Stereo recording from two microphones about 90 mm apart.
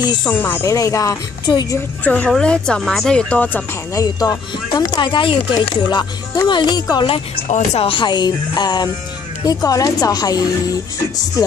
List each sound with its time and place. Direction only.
0.0 s speech: 50° left (ahead or behind)
0.3 s speech: 20° left (ahead or behind)
0.7 s speech: 35° left (ahead or behind)
2.0 s speech: 15° left (ahead or behind)
3.9 s speech: 40° left (ahead or behind)